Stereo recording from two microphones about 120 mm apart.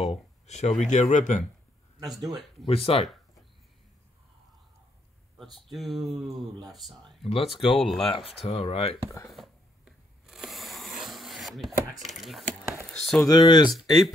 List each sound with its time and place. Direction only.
0.1 s a sound: 70° left (ahead or behind)
0.8 s speech: 80° left
2.6 s speech: 50° left (ahead or behind)
5.4 s speech: centre (ahead or behind)
7.2 s speech: 55° left (ahead or behind)
7.7 s speech: centre (ahead or behind)
8.1 s speech: 50° left (ahead or behind)
9.3 s a sound: centre (ahead or behind)
12.0 s speech: centre (ahead or behind)
13.3 s speech: 35° left (ahead or behind)
13.7 s speech: centre (ahead or behind)